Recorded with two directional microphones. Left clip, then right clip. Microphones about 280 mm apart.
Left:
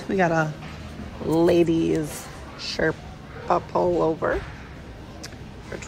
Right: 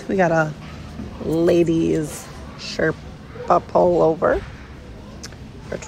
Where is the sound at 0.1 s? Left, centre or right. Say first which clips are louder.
Right 4 dB; centre.